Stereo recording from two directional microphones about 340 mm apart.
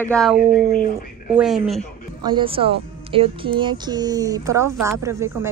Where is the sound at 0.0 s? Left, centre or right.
Centre.